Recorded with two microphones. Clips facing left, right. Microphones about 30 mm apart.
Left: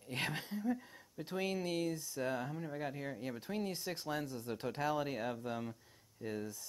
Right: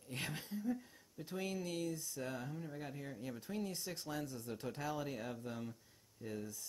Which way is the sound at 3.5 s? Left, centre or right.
Left.